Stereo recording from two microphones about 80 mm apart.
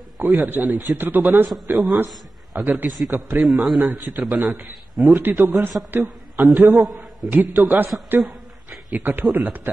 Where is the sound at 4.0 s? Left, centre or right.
Right.